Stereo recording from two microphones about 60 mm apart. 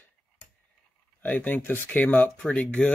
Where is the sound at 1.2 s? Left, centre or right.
Left.